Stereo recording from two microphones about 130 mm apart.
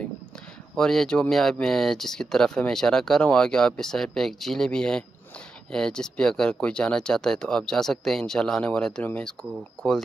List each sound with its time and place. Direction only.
0.7 s speech: 5° left (ahead or behind)